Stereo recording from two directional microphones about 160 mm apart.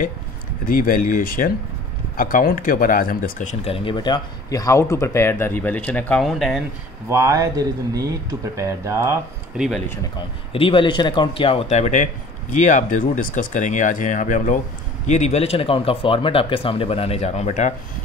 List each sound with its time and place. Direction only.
0.7 s speech: 60° left (ahead or behind)
3.6 s speech: 35° left (ahead or behind); by 6.6 s centre (ahead or behind)
7.1 s speech: 20° right (ahead or behind)
9.6 s speech: 5° right (ahead or behind)
10.5 s speech: 35° left (ahead or behind)
11.7 s speech: 45° left (ahead or behind)